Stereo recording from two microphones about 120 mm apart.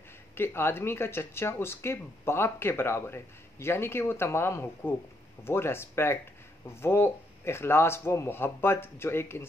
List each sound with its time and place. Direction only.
0.3 s speech: 20° left (ahead or behind)